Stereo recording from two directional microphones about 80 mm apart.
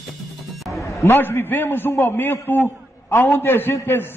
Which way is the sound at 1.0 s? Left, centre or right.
Left.